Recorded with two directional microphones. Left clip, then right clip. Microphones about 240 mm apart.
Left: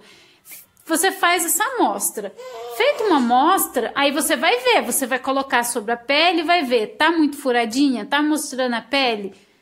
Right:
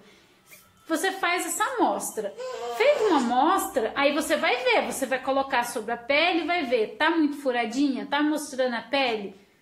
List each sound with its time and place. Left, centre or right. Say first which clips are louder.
0.8 s a woman's voice: left 8 dB; left